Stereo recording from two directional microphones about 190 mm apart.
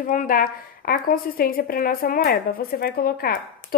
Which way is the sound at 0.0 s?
45° left (ahead or behind).